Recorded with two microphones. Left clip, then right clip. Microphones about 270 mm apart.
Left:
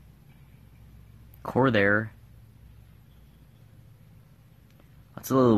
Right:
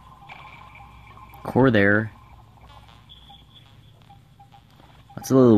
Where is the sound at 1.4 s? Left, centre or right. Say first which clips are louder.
Right 4 dB; centre.